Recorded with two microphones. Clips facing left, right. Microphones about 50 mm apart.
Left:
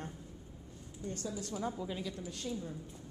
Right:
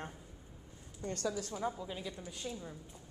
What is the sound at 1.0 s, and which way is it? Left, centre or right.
Speech, right.